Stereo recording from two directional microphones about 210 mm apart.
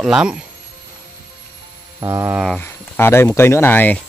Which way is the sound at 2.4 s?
5° left (ahead or behind).